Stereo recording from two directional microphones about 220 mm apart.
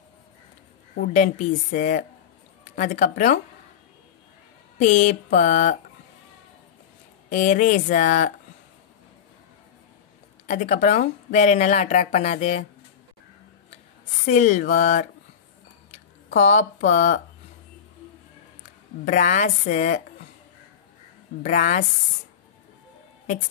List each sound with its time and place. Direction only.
0.9 s a woman's voice: 35° left (ahead or behind)
4.7 s speech: 30° left (ahead or behind)
7.2 s speech: 35° left (ahead or behind)
10.4 s speech: 30° left (ahead or behind)
14.2 s speech: 30° left (ahead or behind)
16.3 s speech: 35° left (ahead or behind)
19.0 s speech: 35° left (ahead or behind)
21.4 s speech: 30° left (ahead or behind)